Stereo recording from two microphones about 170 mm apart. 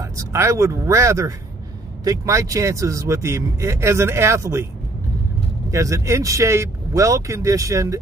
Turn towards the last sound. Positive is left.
turn(degrees=-20)  # may be behind; listen again after turning